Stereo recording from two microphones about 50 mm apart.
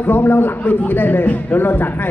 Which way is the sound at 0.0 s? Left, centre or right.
Left.